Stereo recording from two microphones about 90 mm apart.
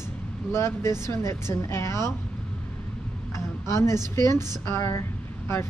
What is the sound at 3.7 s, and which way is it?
Speech, 35° left (ahead or behind).